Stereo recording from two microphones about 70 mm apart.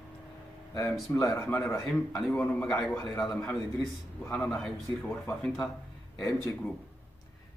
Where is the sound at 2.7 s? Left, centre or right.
Centre.